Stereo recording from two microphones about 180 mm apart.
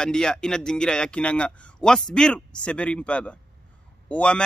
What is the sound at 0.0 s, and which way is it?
A man's voice, 5° left (ahead or behind).